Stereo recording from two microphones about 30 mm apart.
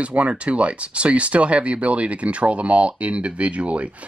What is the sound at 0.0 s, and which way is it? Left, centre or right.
Speech, right.